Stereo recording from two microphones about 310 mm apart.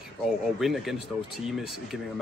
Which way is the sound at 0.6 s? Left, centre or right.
Centre.